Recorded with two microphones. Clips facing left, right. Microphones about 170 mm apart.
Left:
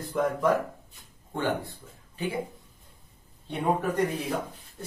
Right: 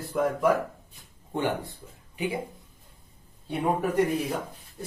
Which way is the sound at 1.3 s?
15° right (ahead or behind).